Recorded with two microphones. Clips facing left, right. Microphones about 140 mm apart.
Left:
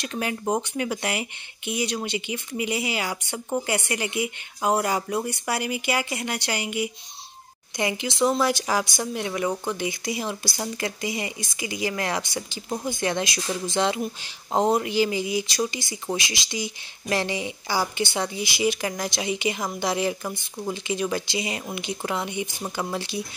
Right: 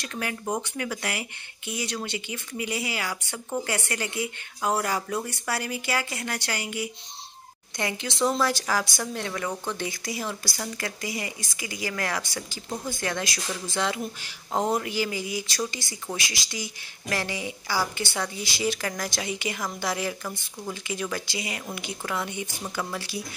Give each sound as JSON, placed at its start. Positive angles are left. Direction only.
{"t": 0.0, "sound": "speech", "side_deg": 20}